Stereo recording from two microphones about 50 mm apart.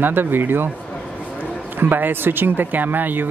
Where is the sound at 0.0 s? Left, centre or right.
Right.